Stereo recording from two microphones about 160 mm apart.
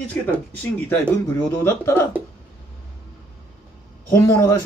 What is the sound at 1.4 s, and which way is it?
Speech, 15° left (ahead or behind).